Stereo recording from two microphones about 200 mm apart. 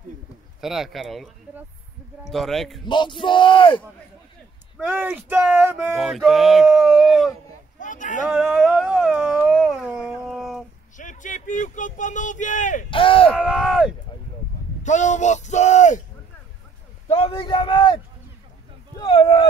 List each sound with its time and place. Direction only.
0.6 s speech: centre (ahead or behind)
2.8 s speech: 25° left (ahead or behind)
4.8 s speech: 5° right (ahead or behind)
7.8 s a sound: 40° left (ahead or behind)
8.3 s a sound: 5° right (ahead or behind)
11.0 s speech: 40° left (ahead or behind)
12.9 s speech: 25° left (ahead or behind)
13.3 s speech: 5° right (ahead or behind)
14.8 s speech: 35° left (ahead or behind)
17.1 s speech: 25° left (ahead or behind)
18.9 s a sound: 25° left (ahead or behind)